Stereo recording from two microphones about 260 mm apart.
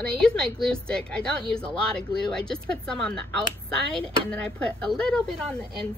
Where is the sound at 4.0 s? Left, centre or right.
Centre.